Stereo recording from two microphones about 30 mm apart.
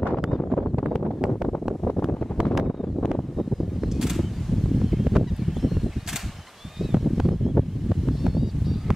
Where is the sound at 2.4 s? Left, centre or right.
Right.